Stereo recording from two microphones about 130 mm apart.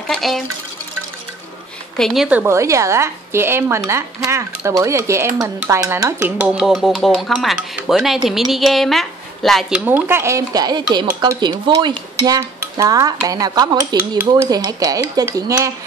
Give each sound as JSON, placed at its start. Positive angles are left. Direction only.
{"t": 0.1, "sound": "speech", "side_deg": 0}
{"t": 2.0, "sound": "a woman's voice", "side_deg": 5}
{"t": 2.2, "sound": "a woman's voice", "side_deg": -10}
{"t": 2.5, "sound": "a woman's voice", "side_deg": -25}
{"t": 6.4, "sound": "speech", "side_deg": -5}
{"t": 9.8, "sound": "a woman's voice", "side_deg": -15}
{"t": 11.1, "sound": "dishes", "side_deg": -35}
{"t": 12.4, "sound": "a sound", "side_deg": -25}
{"t": 13.3, "sound": "a woman's voice", "side_deg": -30}